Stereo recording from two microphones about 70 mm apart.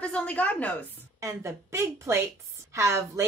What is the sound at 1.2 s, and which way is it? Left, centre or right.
A woman's voice, right.